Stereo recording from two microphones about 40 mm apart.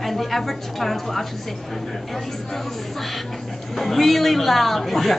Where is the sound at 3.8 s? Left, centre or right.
Centre.